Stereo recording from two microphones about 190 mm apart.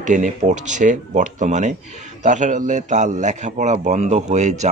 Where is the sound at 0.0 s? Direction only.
40° right (ahead or behind).